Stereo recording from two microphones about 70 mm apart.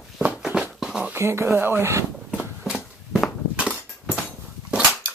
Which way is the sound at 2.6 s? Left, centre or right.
Centre.